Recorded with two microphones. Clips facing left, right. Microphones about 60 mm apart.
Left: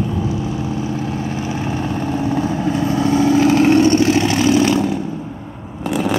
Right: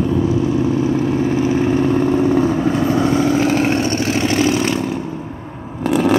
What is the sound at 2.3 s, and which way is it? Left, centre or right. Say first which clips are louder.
Vehicle: right 3 dB; right.